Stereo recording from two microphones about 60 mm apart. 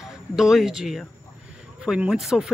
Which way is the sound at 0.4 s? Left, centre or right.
Centre.